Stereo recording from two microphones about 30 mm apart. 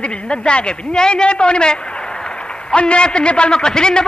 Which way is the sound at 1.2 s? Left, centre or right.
Left.